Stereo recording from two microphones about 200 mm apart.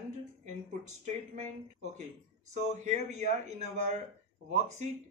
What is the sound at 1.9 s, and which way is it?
A man's voice, 35° right (ahead or behind).